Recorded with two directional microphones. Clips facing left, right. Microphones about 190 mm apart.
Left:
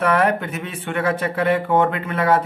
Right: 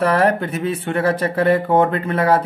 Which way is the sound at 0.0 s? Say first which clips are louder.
Right 2 dB; 35° right (ahead or behind).